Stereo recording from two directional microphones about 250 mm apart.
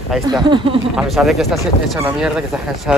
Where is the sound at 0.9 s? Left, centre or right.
Centre.